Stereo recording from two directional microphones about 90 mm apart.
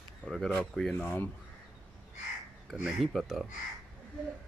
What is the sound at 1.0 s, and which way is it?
Speech, 20° left (ahead or behind).